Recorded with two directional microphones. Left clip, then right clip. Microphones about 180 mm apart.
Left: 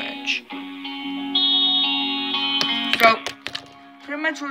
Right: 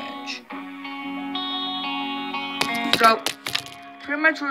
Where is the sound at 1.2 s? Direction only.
30° right (ahead or behind).